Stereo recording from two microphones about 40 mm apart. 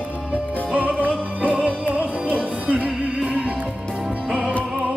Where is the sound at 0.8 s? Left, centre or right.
Right.